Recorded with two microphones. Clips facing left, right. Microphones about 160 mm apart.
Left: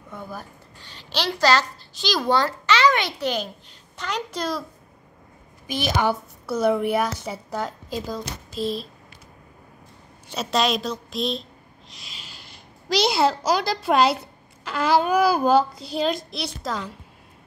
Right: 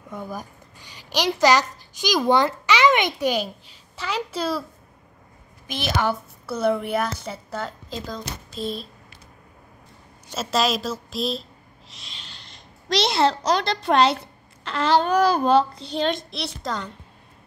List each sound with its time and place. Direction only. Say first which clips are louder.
0.1 s a child's voice: right 3 dB; 15° right (ahead or behind)
5.7 s a woman's voice: left 1 dB; 10° left (ahead or behind)
10.3 s a woman's voice: even; centre (ahead or behind)